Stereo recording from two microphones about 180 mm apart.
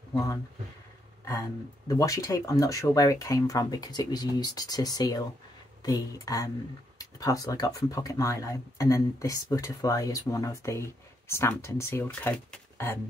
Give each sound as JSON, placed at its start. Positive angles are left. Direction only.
{"t": 1.9, "sound": "speech", "side_deg": 20}